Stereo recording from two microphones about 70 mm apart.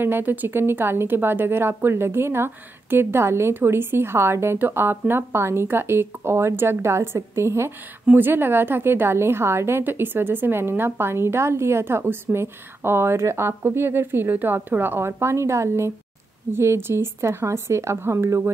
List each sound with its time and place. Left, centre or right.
0.0 s a woman's voice: right
8.1 s a woman's voice: right